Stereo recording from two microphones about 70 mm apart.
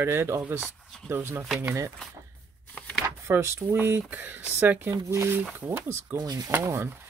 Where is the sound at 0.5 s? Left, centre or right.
Right.